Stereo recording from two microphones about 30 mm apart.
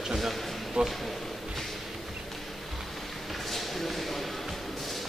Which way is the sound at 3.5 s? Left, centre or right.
Centre.